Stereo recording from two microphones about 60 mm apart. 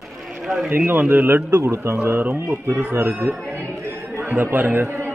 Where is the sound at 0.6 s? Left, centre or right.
Right.